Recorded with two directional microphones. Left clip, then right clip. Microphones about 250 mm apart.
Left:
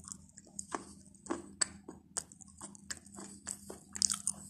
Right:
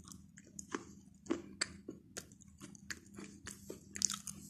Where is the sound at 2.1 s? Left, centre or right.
Right.